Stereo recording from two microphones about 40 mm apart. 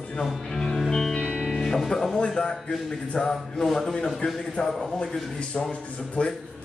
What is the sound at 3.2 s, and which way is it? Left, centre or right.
Speech, centre.